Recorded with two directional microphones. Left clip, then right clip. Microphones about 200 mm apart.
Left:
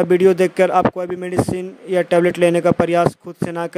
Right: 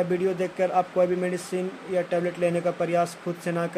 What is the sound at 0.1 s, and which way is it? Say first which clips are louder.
Speech: left 12 dB; 60° left (ahead or behind).